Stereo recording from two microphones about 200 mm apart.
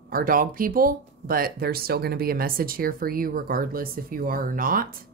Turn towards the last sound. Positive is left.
turn(degrees=-45)  # may be behind; listen again after turning